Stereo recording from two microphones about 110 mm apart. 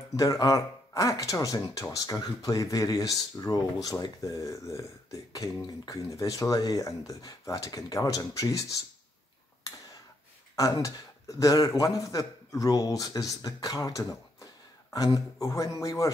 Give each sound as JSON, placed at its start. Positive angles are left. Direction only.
{"t": 0.1, "sound": "speech", "side_deg": 35}
{"t": 10.5, "sound": "a man's voice", "side_deg": 30}